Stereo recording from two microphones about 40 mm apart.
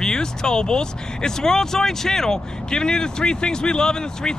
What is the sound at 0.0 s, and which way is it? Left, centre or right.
Speech, centre.